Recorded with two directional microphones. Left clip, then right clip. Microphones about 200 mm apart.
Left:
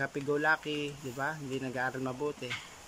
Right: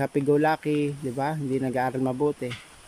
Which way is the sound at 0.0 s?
20° right (ahead or behind).